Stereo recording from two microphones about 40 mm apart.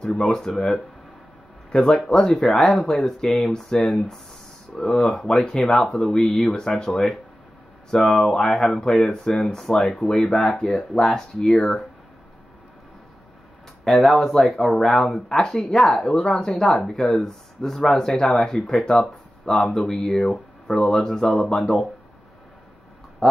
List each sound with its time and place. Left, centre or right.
0.5 s speech: centre
1.7 s speech: centre
13.8 s speech: centre